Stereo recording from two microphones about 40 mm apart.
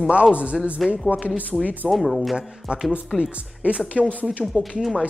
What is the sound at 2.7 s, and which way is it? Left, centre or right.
Speech, right.